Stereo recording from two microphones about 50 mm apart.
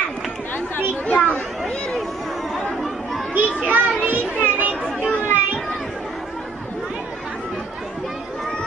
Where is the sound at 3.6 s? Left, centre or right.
Right.